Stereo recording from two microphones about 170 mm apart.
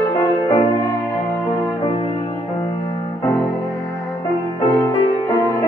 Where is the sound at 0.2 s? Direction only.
25° left (ahead or behind).